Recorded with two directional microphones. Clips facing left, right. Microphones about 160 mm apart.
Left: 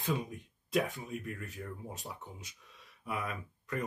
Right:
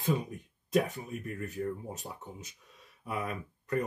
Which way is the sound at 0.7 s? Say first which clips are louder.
Right 3 dB; 40° right (ahead or behind).